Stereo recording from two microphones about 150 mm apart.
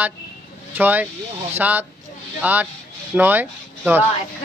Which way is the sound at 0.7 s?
10° right (ahead or behind).